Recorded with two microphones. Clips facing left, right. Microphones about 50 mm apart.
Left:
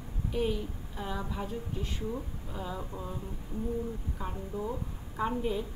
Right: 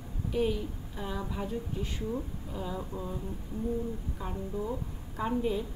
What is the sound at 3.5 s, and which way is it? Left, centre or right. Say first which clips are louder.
Bird: right 1 dB; left.